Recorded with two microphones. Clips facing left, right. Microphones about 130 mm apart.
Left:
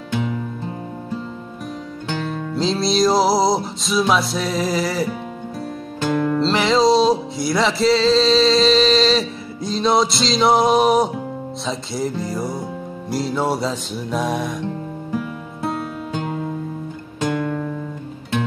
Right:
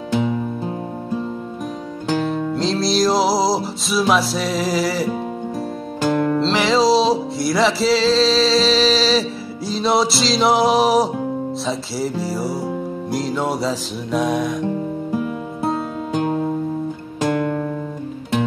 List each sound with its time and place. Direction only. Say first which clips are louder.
2.0 s music: right 6 dB; 5° right (ahead or behind)
6.0 s music: right 1 dB; 10° right (ahead or behind)
6.4 s music: left 2 dB; centre (ahead or behind)
15.1 s music: even; 20° right (ahead or behind)
17.4 s music: right 2 dB; 10° right (ahead or behind)